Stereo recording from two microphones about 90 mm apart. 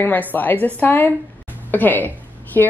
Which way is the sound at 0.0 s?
20° left (ahead or behind).